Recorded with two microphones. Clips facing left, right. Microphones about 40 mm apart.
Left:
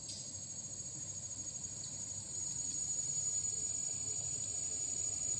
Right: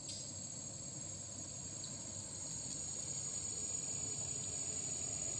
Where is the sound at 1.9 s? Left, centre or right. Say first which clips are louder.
Even; centre.